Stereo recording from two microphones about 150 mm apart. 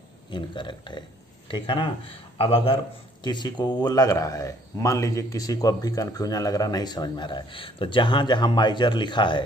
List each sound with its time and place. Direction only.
0.3 s speech: 30° left (ahead or behind)